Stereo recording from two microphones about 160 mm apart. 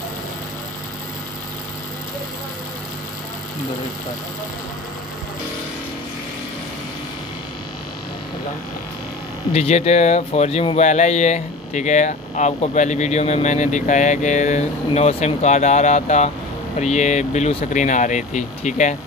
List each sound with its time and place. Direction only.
9.5 s speech: 40° left (ahead or behind)